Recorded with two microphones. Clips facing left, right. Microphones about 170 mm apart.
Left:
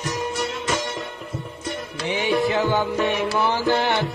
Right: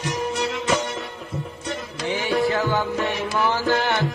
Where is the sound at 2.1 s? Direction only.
20° left (ahead or behind).